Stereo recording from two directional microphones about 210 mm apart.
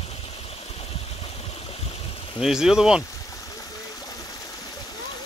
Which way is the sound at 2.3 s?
Centre (ahead or behind).